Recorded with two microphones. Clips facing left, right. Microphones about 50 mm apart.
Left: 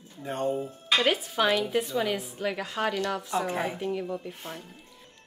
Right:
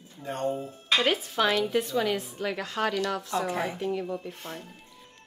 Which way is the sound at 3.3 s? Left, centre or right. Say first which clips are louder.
Left 1 dB; left.